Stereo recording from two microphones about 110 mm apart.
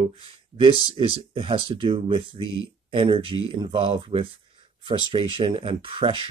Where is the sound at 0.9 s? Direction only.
55° right (ahead or behind).